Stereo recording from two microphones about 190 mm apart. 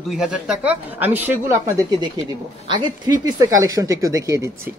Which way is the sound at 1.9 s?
20° right (ahead or behind).